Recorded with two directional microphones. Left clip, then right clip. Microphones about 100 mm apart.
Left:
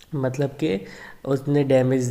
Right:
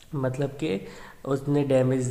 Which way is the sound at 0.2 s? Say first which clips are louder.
Left 4 dB; 25° left (ahead or behind).